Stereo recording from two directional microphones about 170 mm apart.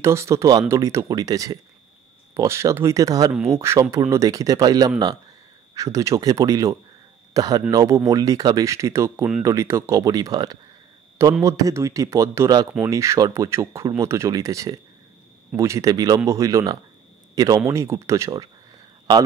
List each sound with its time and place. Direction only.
0.0 s speech: 15° right (ahead or behind)